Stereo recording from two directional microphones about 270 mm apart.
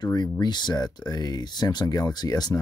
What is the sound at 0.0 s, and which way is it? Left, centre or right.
Speech, centre.